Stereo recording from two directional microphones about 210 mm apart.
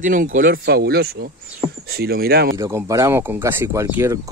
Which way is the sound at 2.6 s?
15° right (ahead or behind).